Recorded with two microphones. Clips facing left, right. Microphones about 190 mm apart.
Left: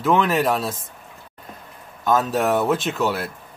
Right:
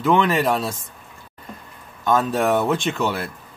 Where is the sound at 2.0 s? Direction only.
Centre (ahead or behind).